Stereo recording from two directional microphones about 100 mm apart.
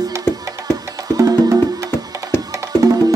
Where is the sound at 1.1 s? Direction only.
35° right (ahead or behind).